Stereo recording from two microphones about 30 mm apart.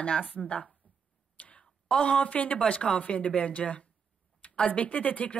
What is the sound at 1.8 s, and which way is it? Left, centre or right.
Speech, left.